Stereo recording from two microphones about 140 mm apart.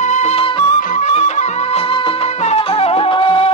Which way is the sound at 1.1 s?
50° left (ahead or behind).